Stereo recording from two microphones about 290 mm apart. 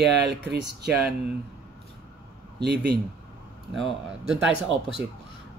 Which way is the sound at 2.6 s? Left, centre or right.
Right.